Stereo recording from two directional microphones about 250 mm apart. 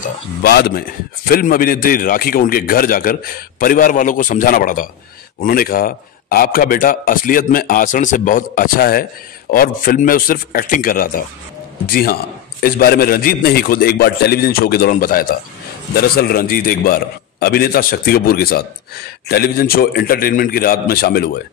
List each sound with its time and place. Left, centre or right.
0.4 s a man's voice: left